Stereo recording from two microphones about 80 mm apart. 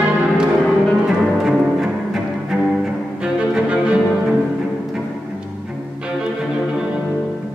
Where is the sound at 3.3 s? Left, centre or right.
Centre.